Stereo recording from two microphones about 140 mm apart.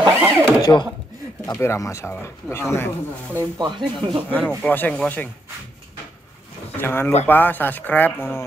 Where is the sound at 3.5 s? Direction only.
30° right (ahead or behind).